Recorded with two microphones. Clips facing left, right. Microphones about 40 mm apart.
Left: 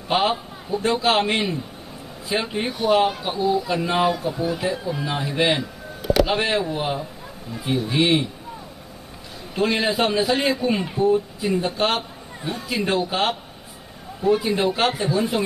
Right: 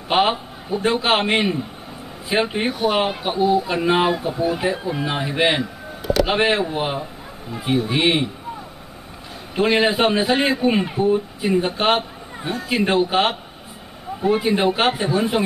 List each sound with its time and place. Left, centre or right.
0.1 s speech: right
9.6 s speech: right